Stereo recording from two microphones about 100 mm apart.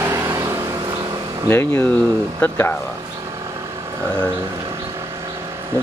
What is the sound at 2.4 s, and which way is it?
Speech, 15° left (ahead or behind).